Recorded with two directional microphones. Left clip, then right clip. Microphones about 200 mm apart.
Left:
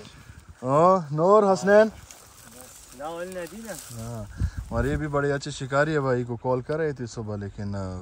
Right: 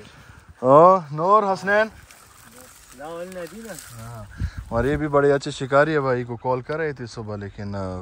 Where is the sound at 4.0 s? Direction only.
25° left (ahead or behind).